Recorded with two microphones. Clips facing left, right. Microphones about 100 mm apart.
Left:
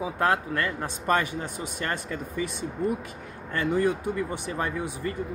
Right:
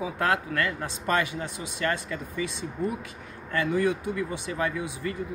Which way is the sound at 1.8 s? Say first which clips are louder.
Right 3 dB; 40° left (ahead or behind).